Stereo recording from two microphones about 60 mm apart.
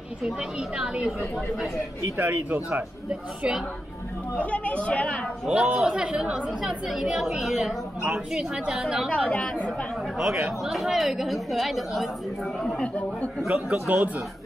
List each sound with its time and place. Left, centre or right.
0.7 s a woman's voice: centre
2.1 s speech: right
2.7 s a woman's voice: centre
4.4 s speech: left
5.5 s a woman's voice: centre
6.9 s a woman's voice: centre
10.6 s a woman's voice: centre
12.6 s a sound: centre
13.5 s speech: centre